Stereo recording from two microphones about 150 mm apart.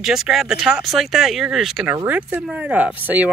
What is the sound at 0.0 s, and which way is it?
Speech, 5° right (ahead or behind).